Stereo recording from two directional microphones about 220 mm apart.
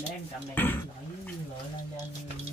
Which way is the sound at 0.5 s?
10° left (ahead or behind).